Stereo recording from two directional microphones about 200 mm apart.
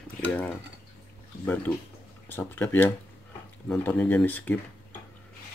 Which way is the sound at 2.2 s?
10° left (ahead or behind).